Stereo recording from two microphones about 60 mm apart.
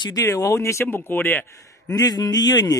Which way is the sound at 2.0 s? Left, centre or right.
Left.